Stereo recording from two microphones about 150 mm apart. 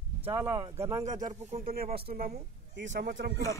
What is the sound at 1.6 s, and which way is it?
Speech, 80° right.